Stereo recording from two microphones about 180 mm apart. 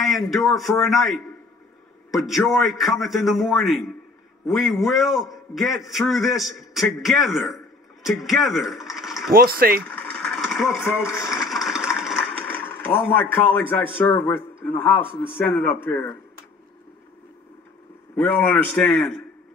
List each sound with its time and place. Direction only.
0.0 s a man's voice: centre (ahead or behind)
9.3 s speech: 55° right (ahead or behind)
9.8 s radio: 5° left (ahead or behind)
12.4 s speech: 10° left (ahead or behind)
18.1 s speech: 5° left (ahead or behind)